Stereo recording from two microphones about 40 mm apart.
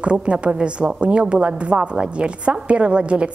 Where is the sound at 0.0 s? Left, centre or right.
Right.